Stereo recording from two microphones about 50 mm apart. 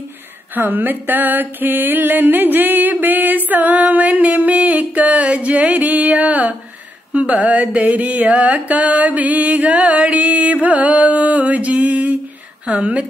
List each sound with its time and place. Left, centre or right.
0.6 s music: right
7.1 s mantra: right
12.6 s a woman's voice: right